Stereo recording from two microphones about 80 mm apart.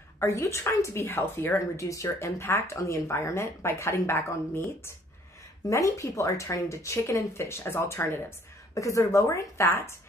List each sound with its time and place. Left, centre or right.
0.2 s speech: left
1.8 s speech: left